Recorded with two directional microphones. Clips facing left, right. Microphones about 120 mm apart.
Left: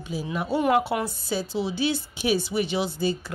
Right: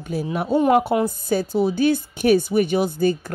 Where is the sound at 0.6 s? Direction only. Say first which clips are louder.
Right 5 dB; 40° right (ahead or behind).